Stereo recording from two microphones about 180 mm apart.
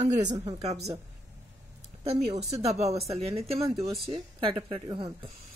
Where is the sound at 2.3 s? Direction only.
35° right (ahead or behind).